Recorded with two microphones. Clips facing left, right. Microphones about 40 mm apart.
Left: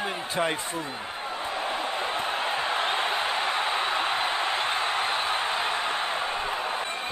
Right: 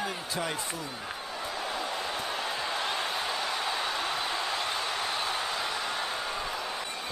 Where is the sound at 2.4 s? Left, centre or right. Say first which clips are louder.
Left 5 dB; left.